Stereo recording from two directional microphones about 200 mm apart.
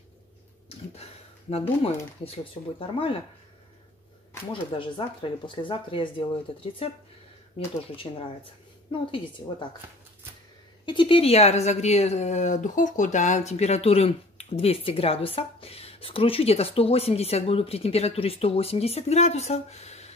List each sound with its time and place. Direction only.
0.7 s a sound: 30° left (ahead or behind)
2.6 s speech: 25° left (ahead or behind)
4.5 s speech: 25° left (ahead or behind)
10.9 s speech: 25° left (ahead or behind)